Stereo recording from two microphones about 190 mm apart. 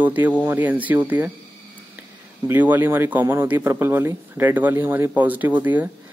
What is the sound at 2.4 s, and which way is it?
Speech, 10° right (ahead or behind).